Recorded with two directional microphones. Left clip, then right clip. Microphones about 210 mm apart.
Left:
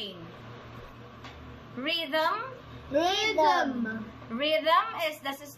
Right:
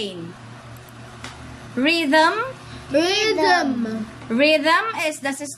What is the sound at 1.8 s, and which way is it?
Speech, 50° right (ahead or behind).